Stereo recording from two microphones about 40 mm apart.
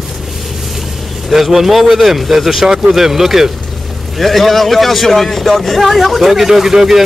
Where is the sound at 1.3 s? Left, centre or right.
Centre.